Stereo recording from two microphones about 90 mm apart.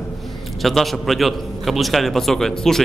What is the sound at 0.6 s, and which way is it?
A man's voice, centre (ahead or behind).